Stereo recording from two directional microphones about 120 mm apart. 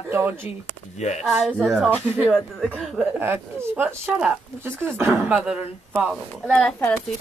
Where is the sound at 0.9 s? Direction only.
70° left (ahead or behind).